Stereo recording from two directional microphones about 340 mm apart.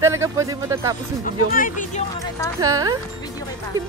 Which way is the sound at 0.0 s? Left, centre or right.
Centre.